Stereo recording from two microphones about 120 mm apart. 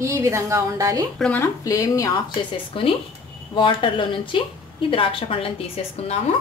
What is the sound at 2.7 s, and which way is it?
A woman's voice, 50° left (ahead or behind).